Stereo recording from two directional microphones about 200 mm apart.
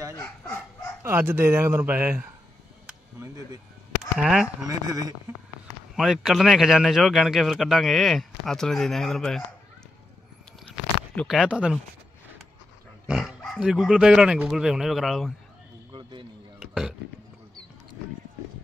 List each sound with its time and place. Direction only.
0.1 s fowl: 10° left (ahead or behind)
1.0 s speech: 10° right (ahead or behind)
4.2 s speech: centre (ahead or behind)
4.6 s speech: 15° right (ahead or behind)
5.9 s speech: centre (ahead or behind)
11.1 s speech: centre (ahead or behind)
13.0 s dog: 5° right (ahead or behind)
13.6 s speech: 5° right (ahead or behind)
15.9 s a sound: 20° right (ahead or behind)
16.5 s a sound: 5° right (ahead or behind)